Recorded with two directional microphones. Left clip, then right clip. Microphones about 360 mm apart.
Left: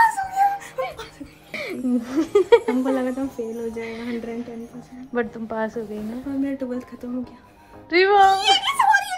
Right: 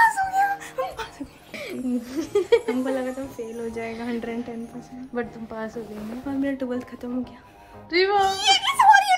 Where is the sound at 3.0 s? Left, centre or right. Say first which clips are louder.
Left 4 dB; centre.